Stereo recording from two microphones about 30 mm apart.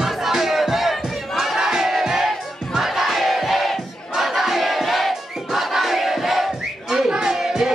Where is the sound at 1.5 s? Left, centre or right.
Centre.